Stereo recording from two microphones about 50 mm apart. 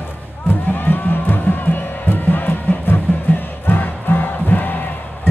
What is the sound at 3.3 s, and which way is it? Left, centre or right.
Music, left.